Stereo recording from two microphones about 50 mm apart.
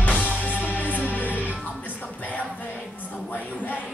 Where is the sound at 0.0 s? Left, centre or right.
Left.